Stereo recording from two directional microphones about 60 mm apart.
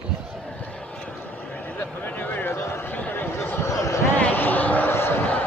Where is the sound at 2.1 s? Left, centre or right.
Left.